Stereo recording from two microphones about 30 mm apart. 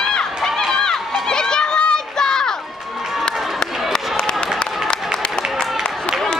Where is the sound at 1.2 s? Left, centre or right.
Left.